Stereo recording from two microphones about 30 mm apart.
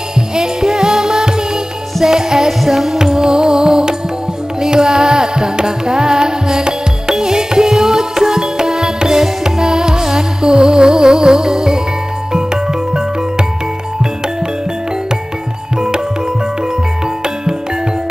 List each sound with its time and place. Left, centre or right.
0.3 s music: right
1.2 s music: right
2.6 s music: centre
3.0 s music: centre